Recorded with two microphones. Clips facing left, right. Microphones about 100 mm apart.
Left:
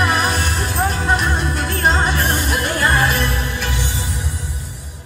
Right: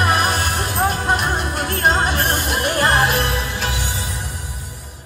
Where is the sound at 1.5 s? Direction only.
45° right (ahead or behind).